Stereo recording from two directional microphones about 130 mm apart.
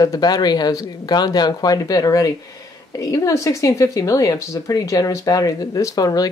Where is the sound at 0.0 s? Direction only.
30° left (ahead or behind).